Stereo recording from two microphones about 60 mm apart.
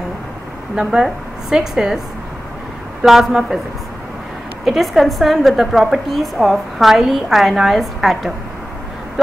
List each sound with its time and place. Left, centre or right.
0.7 s a woman's voice: centre
3.1 s a woman's voice: centre
4.6 s a woman's voice: centre